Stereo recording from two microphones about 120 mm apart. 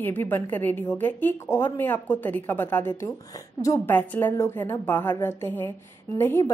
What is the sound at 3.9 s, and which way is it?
A woman's voice, 15° left (ahead or behind).